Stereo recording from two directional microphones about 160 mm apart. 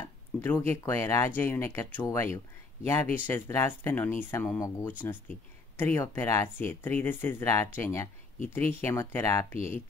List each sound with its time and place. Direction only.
0.4 s speech: 15° left (ahead or behind)